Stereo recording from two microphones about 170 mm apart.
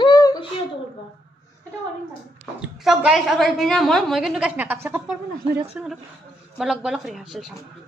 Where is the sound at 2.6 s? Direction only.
5° right (ahead or behind).